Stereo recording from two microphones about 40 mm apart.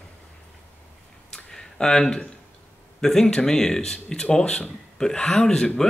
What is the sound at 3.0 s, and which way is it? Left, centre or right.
Speech, centre.